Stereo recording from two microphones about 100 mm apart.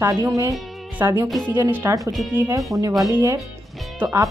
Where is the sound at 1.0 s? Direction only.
20° right (ahead or behind).